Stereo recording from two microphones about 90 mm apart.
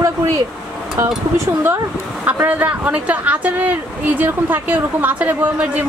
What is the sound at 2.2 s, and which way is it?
Speech, 20° right (ahead or behind).